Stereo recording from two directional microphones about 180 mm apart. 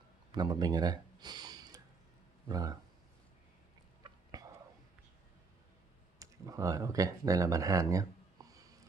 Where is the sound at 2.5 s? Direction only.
20° right (ahead or behind).